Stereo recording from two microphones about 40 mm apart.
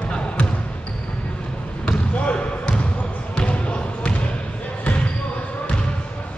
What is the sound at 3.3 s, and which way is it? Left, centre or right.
Basketball bounce, left.